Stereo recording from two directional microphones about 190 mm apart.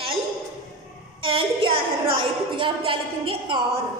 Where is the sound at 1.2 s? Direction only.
25° right (ahead or behind).